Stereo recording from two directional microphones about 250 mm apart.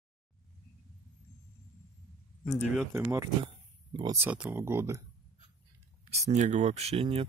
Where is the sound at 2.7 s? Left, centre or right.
Centre.